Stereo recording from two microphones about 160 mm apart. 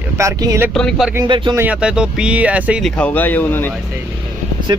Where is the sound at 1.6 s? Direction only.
5° right (ahead or behind).